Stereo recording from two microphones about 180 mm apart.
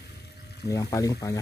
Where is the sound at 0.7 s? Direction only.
20° left (ahead or behind).